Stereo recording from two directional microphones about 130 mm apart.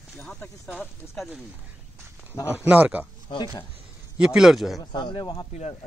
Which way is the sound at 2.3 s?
20° left (ahead or behind).